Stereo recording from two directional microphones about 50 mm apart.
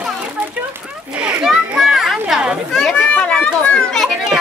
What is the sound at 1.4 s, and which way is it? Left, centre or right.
Children playing, centre.